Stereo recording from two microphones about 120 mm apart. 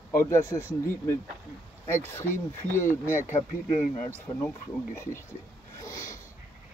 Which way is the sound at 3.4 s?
80° left.